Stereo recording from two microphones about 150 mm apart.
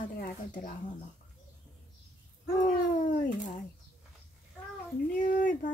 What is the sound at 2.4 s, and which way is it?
Speech, 60° left (ahead or behind).